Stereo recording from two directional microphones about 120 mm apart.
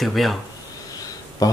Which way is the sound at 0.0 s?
Centre (ahead or behind).